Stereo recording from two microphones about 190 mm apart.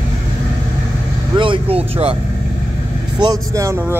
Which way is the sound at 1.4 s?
30° right (ahead or behind).